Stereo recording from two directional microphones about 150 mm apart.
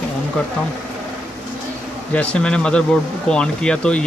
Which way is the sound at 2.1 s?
5° left (ahead or behind).